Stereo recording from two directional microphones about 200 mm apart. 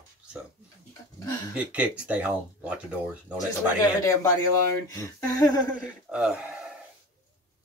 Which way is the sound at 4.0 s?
15° left (ahead or behind).